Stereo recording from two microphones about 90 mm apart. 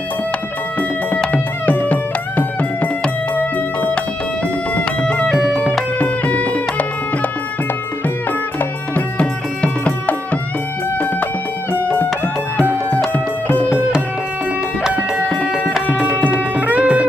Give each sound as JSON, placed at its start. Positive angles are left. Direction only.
{"t": 1.2, "sound": "music", "side_deg": 15}
{"t": 8.9, "sound": "music", "side_deg": 15}
{"t": 13.1, "sound": "music", "side_deg": 20}
{"t": 16.3, "sound": "tabla", "side_deg": -15}